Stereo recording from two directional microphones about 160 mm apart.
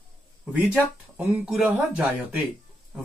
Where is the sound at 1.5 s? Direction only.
5° right (ahead or behind).